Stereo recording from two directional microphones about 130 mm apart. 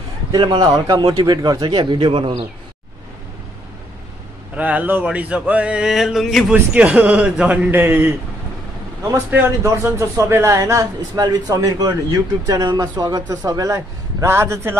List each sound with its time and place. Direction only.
0.4 s a man's voice: 35° right (ahead or behind)
4.6 s a sound: 10° right (ahead or behind)
9.3 s speech: 20° right (ahead or behind)